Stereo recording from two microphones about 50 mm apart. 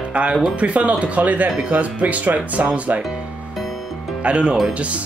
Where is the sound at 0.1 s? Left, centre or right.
Right.